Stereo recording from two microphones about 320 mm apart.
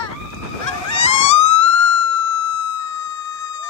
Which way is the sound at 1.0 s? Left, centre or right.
Left.